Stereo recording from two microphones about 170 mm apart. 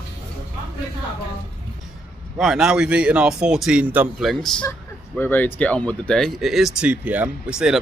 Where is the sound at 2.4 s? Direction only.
5° right (ahead or behind).